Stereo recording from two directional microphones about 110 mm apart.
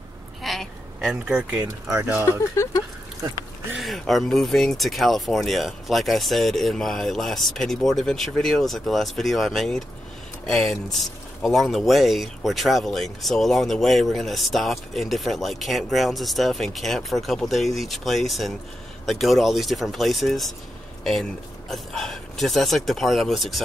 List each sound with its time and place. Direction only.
0.4 s a sound: centre (ahead or behind)
1.2 s speech: 10° right (ahead or behind)
2.2 s speech: 25° left (ahead or behind)
3.7 s speech: centre (ahead or behind)